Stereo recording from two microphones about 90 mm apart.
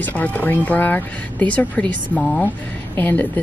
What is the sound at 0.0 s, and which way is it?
A woman's voice, 15° left (ahead or behind).